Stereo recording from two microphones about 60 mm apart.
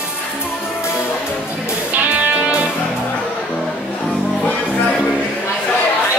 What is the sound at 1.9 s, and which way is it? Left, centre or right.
Music, right.